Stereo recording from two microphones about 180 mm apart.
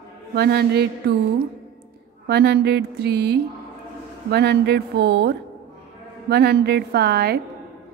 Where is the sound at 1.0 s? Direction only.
65° right (ahead or behind).